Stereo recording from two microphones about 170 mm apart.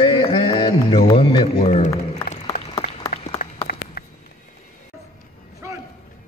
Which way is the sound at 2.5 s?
70° left (ahead or behind).